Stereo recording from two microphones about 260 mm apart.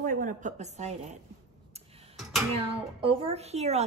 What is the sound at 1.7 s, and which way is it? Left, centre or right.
Tick, right.